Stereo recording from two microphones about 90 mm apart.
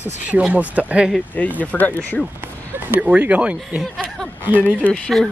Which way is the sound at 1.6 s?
20° left (ahead or behind).